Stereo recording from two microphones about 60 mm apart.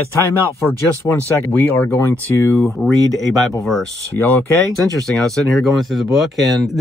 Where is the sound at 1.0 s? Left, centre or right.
Left.